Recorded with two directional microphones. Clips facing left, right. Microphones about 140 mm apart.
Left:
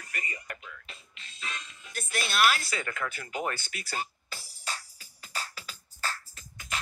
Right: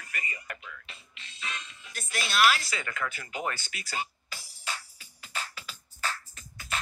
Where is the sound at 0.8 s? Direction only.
40° left (ahead or behind).